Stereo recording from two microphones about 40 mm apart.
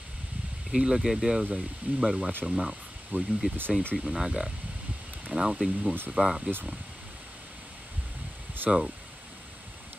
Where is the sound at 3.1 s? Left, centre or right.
Right.